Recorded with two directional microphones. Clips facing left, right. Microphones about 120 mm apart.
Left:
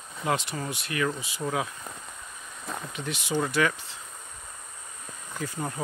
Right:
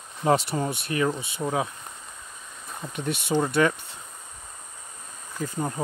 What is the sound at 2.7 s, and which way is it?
Insect, 90° left.